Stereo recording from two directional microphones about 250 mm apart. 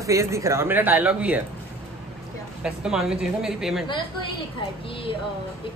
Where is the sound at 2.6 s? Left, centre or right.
Centre.